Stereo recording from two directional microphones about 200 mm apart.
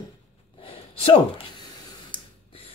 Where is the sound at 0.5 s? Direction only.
25° left (ahead or behind).